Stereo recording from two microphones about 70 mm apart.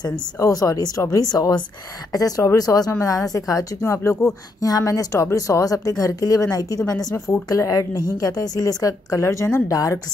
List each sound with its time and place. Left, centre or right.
0.4 s a woman's voice: left
4.6 s a woman's voice: left